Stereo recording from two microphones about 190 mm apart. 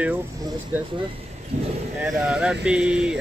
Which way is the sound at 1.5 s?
35° right (ahead or behind).